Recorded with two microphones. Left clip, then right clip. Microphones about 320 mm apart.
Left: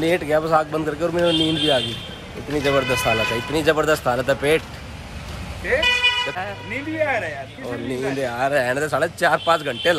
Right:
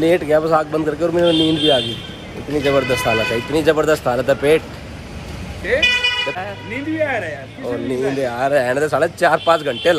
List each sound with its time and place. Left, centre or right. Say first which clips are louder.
0.0 s speech: right 5 dB; centre